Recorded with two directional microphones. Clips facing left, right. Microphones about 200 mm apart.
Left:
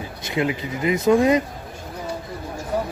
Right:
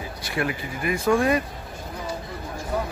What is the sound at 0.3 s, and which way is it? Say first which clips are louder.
Speech: left 4 dB; 20° left (ahead or behind).